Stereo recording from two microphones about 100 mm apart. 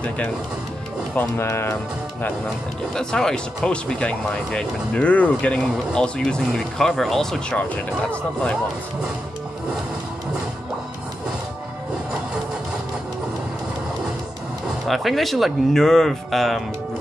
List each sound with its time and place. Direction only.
1.1 s speech: 25° left (ahead or behind)
2.9 s speech: 5° left (ahead or behind)
14.7 s speech: centre (ahead or behind)